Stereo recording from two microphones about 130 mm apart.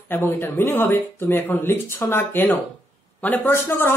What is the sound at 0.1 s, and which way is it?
A man's voice, 15° left (ahead or behind).